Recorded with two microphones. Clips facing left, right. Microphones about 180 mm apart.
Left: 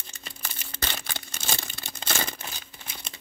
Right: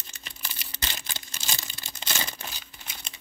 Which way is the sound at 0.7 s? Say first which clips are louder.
Left 5 dB; 60° left (ahead or behind).